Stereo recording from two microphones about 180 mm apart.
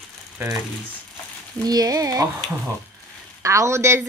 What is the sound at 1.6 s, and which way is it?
Speech, 20° right (ahead or behind).